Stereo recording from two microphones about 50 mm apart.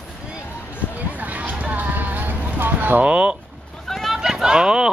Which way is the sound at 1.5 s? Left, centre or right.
Right.